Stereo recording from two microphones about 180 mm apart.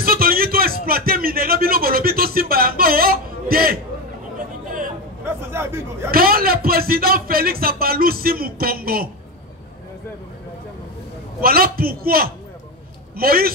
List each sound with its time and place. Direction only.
0.0 s music: 55° right (ahead or behind)
5.2 s chatter: 15° right (ahead or behind)
6.1 s a man's voice: 55° right (ahead or behind)
11.4 s a man's voice: 55° right (ahead or behind)